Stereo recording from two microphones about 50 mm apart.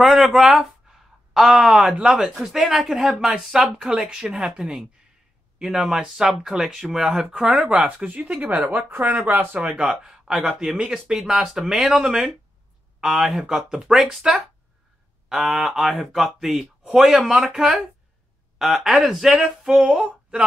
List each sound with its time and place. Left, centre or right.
0.0 s speech: centre
0.9 s a sound: centre
1.3 s speech: centre
3.2 s speech: centre
5.6 s speech: centre
7.4 s speech: right
8.6 s speech: right
9.6 s speech: right
10.0 s speech: centre
20.0 s a sound: centre